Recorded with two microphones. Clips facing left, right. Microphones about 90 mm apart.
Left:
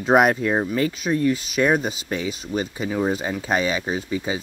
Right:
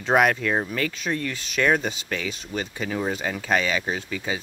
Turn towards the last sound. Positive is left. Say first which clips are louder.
# left 4 dB
turn(degrees=20)  # may be behind; listen again after turning